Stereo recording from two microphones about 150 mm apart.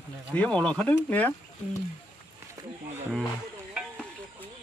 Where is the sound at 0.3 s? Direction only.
10° left (ahead or behind).